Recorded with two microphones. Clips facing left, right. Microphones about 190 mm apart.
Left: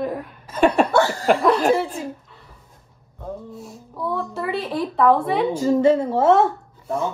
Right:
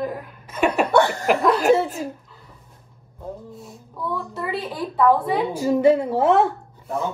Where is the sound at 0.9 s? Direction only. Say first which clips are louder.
Right 1 dB; 20° right (ahead or behind).